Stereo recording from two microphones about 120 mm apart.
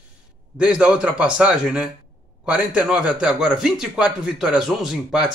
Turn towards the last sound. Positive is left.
turn(degrees=-5)  # may be behind; listen again after turning